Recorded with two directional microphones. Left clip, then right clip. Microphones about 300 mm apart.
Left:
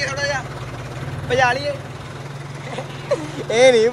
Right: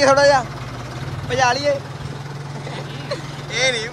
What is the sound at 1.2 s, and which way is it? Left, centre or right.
Speech, centre.